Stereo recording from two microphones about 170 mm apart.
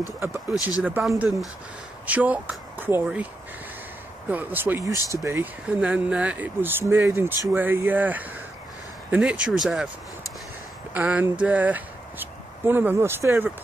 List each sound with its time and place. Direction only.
0.2 s speech: 15° right (ahead or behind)
4.3 s speech: 10° right (ahead or behind)
4.9 s speech: 20° left (ahead or behind)
5.2 s speech: 15° right (ahead or behind)
10.9 s speech: 10° right (ahead or behind)